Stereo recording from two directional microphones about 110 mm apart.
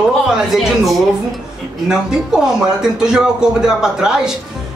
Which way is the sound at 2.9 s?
5° right (ahead or behind).